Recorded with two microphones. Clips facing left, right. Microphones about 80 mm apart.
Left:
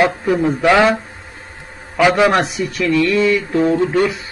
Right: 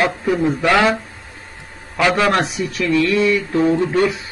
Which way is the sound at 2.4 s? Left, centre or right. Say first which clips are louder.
Left 2 dB; centre.